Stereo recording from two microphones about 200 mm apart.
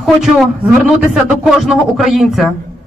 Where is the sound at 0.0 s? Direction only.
Centre (ahead or behind).